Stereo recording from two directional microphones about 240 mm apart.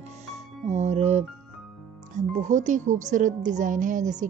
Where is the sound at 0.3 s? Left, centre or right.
Right.